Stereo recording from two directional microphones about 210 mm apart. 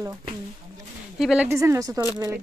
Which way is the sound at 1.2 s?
5° right (ahead or behind).